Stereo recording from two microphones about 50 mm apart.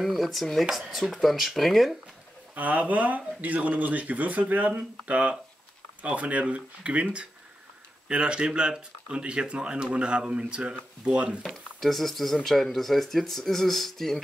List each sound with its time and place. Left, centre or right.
0.0 s speech: centre
2.5 s speech: right
11.4 s speech: centre